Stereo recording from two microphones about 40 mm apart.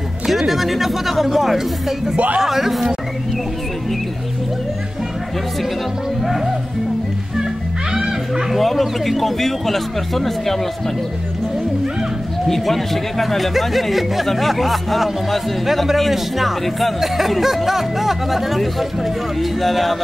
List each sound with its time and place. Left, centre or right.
0.3 s speech: centre
2.1 s speech: right
2.4 s speech: centre
6.2 s speech: centre
7.9 s music: centre
8.5 s speech: centre
12.4 s speech: centre